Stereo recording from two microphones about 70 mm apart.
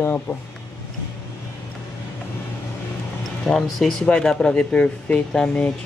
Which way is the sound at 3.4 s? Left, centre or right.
Centre.